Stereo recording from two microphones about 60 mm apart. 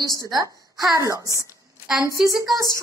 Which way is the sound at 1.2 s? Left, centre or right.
Right.